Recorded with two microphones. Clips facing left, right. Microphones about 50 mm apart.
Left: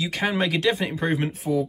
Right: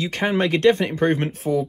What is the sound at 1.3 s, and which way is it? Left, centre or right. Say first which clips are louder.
Speech: right 2 dB; right.